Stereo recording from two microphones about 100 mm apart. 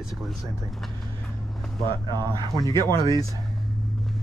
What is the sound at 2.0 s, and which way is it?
Speech, 45° right (ahead or behind).